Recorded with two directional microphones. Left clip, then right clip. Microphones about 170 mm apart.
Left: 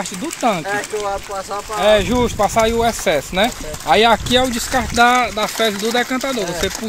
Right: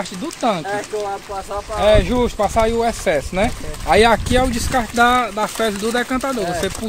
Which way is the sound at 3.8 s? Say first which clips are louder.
Even; centre (ahead or behind).